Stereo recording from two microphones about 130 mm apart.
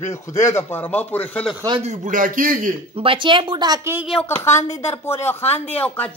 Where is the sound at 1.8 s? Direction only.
70° right (ahead or behind); by 2.7 s 90° right.